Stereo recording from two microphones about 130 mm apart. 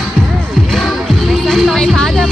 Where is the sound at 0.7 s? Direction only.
5° left (ahead or behind).